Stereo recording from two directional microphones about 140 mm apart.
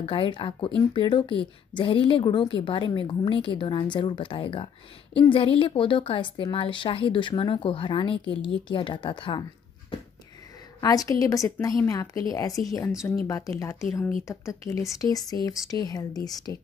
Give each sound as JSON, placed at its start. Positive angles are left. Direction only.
{"t": 0.0, "sound": "speech", "side_deg": 35}
{"t": 10.8, "sound": "speech", "side_deg": 25}